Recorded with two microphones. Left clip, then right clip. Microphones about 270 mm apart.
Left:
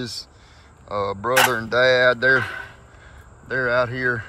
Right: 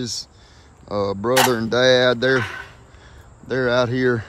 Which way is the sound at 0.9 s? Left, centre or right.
Centre.